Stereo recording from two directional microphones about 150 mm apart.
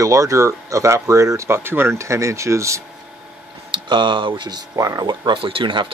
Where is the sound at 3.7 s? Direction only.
30° right (ahead or behind).